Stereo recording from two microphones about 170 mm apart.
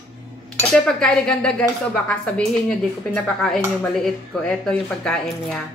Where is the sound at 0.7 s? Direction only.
5° left (ahead or behind).